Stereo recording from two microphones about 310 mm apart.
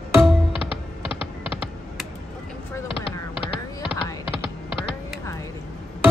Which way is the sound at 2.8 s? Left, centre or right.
Centre.